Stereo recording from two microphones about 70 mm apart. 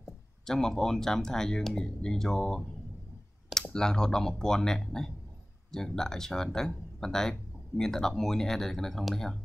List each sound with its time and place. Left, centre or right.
0.5 s speech: centre